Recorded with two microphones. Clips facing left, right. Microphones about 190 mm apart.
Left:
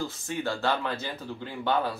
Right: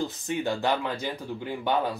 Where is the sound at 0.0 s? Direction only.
20° right (ahead or behind).